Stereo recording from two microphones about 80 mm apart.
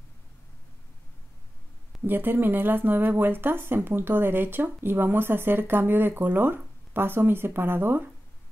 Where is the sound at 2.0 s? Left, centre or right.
Right.